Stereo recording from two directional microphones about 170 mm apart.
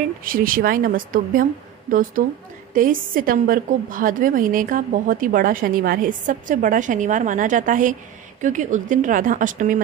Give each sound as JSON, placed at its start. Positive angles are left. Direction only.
{"t": 0.2, "sound": "a woman's voice", "side_deg": -55}